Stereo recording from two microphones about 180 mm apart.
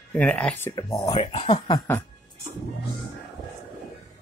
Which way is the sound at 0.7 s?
25° left (ahead or behind).